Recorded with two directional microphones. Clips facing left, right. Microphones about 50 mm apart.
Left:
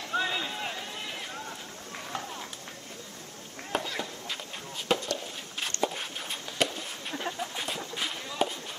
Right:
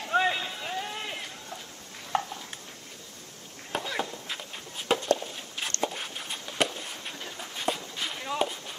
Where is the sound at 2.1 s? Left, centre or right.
Right.